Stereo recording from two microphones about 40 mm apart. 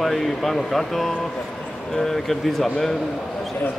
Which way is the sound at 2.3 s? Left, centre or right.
Centre.